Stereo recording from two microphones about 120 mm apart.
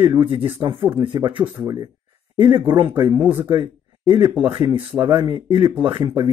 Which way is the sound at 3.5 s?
40° right (ahead or behind).